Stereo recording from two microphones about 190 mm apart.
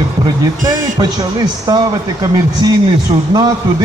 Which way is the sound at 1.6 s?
20° right (ahead or behind).